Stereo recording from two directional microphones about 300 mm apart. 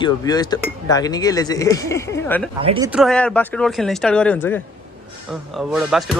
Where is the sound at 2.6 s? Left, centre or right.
Centre.